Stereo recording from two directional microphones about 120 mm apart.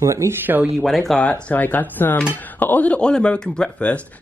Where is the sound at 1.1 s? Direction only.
10° left (ahead or behind).